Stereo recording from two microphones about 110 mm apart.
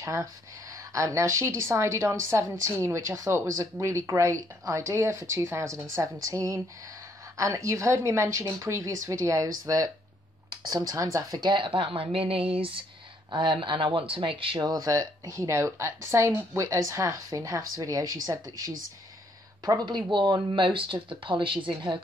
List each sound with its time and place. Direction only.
0.0 s a woman's voice: 25° right (ahead or behind); by 14.6 s 50° right (ahead or behind)
14.6 s speech: 35° right (ahead or behind)
20.1 s a woman's voice: 40° right (ahead or behind)